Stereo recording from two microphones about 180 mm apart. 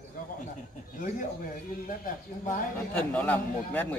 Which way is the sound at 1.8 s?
50° left (ahead or behind).